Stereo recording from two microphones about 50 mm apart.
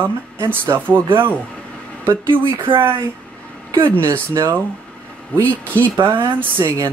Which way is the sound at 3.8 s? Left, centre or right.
Right.